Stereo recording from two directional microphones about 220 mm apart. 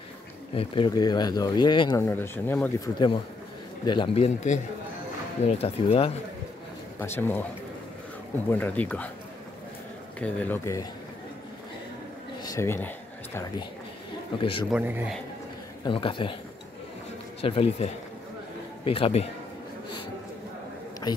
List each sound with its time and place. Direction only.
0.6 s speech: 20° left (ahead or behind)
2.0 s speech: 10° left (ahead or behind)
3.8 s speech: 20° left (ahead or behind)
7.0 s speech: 10° left (ahead or behind)
8.5 s speech: 10° left (ahead or behind)
10.2 s speech: 10° left (ahead or behind)
12.4 s speech: 10° left (ahead or behind)
14.4 s speech: 25° left (ahead or behind)
14.7 s a man's voice: 10° right (ahead or behind)
15.8 s speech: 20° left (ahead or behind)
17.4 s speech: 25° left (ahead or behind)